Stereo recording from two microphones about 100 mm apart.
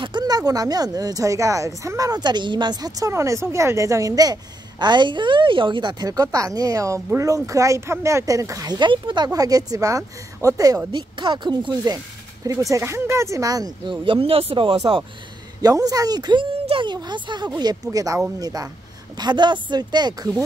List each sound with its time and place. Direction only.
0.0 s speech: 45° right (ahead or behind)
6.0 s speech: 35° right (ahead or behind)
10.9 s speech: 55° right (ahead or behind)
12.4 s speech: 35° right (ahead or behind)
13.8 s speech: 55° right (ahead or behind)
15.6 s speech: 40° right (ahead or behind)